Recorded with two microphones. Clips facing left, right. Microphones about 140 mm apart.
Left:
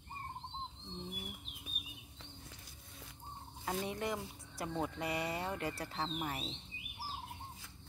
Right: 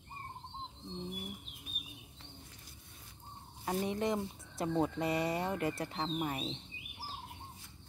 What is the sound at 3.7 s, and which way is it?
Speech, 20° right (ahead or behind).